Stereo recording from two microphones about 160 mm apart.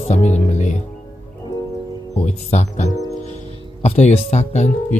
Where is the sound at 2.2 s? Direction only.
45° left (ahead or behind).